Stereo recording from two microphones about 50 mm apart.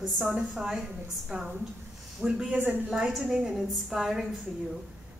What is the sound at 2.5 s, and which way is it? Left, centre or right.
Speech, right.